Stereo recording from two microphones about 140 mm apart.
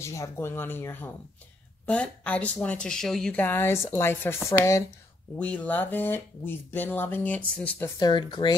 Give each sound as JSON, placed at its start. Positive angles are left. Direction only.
{"t": 0.0, "sound": "speech", "side_deg": 20}
{"t": 5.3, "sound": "speech", "side_deg": 10}
{"t": 8.0, "sound": "speech", "side_deg": 35}